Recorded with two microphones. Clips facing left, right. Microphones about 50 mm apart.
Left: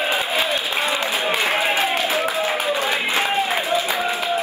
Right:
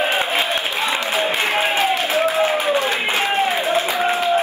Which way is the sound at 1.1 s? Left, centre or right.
Right.